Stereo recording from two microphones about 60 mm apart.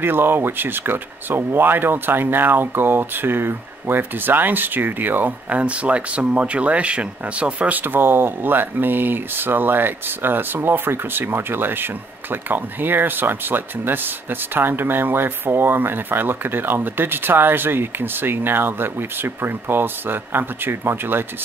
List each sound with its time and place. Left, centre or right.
0.0 s speech: right